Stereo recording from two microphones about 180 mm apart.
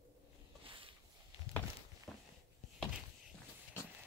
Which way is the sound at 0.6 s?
30° right (ahead or behind).